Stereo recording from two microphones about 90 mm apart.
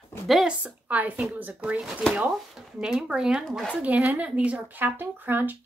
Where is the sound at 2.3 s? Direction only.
5° right (ahead or behind).